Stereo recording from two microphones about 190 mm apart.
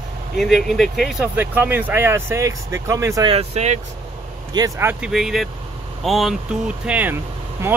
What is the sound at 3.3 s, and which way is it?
Speech, 35° right (ahead or behind).